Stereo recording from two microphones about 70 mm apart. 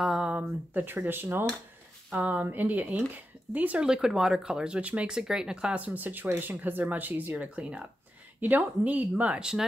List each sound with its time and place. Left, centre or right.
0.0 s a sound: centre
0.7 s speech: right
5.9 s speech: right; by 9.7 s centre